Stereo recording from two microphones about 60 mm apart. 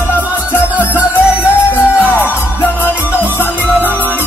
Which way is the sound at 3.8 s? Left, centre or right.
Right.